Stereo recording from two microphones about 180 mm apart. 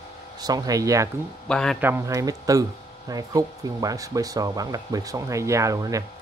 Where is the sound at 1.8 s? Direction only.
15° right (ahead or behind).